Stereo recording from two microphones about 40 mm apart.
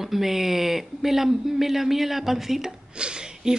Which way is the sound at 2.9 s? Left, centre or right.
Right.